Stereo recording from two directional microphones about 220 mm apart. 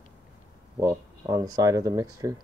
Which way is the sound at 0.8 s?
15° right (ahead or behind).